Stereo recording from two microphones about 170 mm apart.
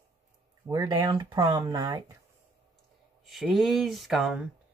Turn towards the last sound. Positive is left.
turn(degrees=0)  # may be behind; listen again after turning